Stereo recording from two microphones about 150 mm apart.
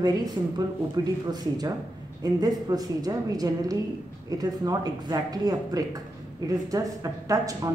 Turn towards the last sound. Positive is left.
turn(degrees=-25)  # may be behind; listen again after turning